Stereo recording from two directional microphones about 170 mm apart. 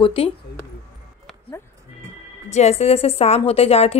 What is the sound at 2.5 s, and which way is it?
Speech, 40° left (ahead or behind).